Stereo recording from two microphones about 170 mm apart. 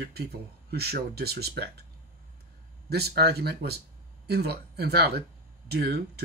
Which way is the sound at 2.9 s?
70° right (ahead or behind).